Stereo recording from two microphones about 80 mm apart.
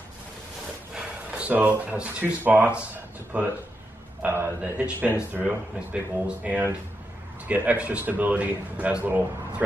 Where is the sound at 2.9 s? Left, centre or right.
Centre.